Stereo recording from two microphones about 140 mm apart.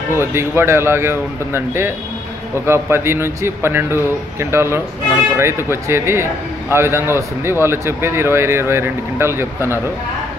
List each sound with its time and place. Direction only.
0.2 s speech: 15° right (ahead or behind)